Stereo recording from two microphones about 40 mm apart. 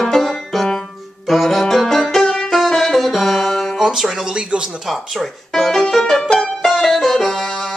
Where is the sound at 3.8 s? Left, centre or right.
Centre.